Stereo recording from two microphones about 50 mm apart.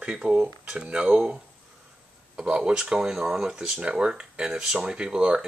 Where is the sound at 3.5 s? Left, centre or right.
Centre.